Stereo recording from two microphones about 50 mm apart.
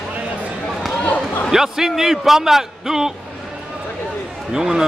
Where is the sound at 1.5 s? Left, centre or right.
Centre.